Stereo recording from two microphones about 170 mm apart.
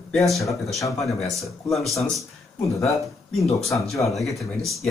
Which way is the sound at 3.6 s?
Centre (ahead or behind).